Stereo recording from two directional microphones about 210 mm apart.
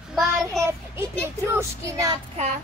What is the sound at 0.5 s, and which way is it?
Child singing, 15° right (ahead or behind).